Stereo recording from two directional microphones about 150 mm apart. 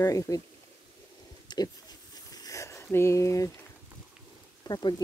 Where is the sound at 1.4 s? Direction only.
25° left (ahead or behind).